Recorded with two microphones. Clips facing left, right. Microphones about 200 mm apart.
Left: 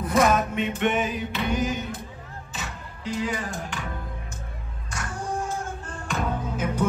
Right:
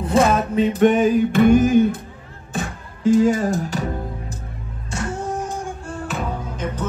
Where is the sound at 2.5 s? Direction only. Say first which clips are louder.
Right 11 dB; 50° right (ahead or behind).